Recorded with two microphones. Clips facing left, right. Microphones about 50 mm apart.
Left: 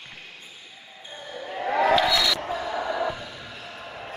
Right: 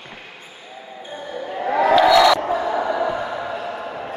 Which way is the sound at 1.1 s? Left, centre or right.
Right.